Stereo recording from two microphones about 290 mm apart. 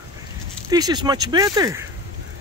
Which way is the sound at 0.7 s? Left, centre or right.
Centre.